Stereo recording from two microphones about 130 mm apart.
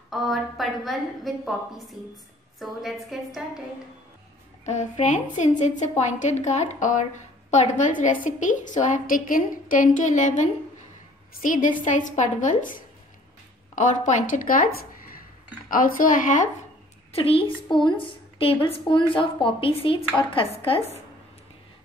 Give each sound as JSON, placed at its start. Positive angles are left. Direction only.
{"t": 0.1, "sound": "a woman's voice", "side_deg": 0}
{"t": 2.6, "sound": "a woman's voice", "side_deg": 0}
{"t": 4.6, "sound": "a woman's voice", "side_deg": 65}
{"t": 11.4, "sound": "a woman's voice", "side_deg": 90}
{"t": 15.7, "sound": "speech", "side_deg": 90}
{"t": 17.1, "sound": "a woman's voice", "side_deg": 45}